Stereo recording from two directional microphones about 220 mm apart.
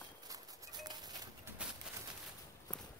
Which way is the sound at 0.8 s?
20° right (ahead or behind).